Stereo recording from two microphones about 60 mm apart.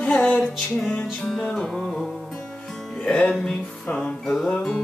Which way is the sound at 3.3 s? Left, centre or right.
Centre.